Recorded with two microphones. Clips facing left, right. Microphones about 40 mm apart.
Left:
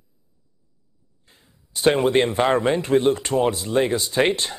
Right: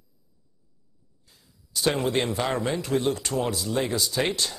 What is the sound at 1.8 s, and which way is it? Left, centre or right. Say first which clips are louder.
A man's voice: left 7 dB; left.